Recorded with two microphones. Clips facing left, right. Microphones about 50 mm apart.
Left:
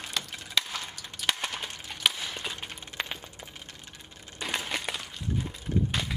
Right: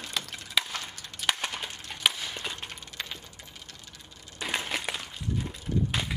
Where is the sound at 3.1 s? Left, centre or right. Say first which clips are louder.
Left 3 dB; left.